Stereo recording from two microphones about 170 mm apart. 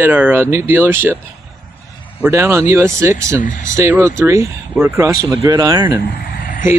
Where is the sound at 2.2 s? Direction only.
15° right (ahead or behind).